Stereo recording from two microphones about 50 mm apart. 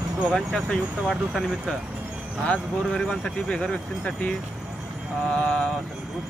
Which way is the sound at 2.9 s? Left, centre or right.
Centre.